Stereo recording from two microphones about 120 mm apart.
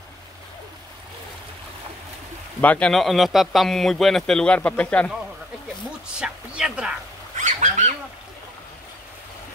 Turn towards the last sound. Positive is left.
turn(degrees=-85)